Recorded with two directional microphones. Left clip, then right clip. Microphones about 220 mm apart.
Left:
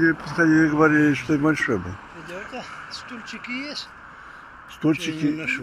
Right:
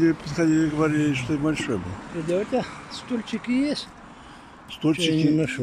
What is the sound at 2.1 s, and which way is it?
Speech, 45° right (ahead or behind).